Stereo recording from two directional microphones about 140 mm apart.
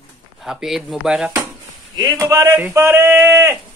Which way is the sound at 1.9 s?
25° right (ahead or behind).